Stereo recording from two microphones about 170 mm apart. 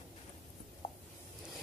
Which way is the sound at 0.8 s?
35° left (ahead or behind).